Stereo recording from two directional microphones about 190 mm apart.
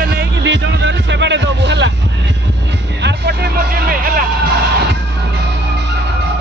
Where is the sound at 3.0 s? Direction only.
60° right (ahead or behind).